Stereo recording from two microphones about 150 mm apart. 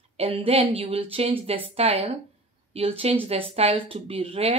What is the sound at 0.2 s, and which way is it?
Speech, 40° right (ahead or behind).